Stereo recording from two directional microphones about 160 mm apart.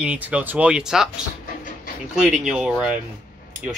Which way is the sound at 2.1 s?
5° right (ahead or behind).